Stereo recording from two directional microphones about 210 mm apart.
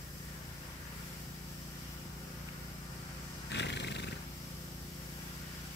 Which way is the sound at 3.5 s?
55° left (ahead or behind).